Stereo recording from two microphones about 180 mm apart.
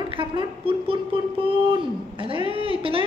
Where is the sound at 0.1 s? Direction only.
30° right (ahead or behind).